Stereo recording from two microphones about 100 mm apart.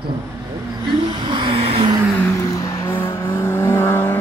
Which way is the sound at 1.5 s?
75° right (ahead or behind).